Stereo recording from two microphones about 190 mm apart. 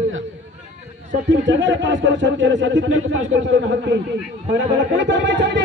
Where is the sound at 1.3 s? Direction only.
80° right.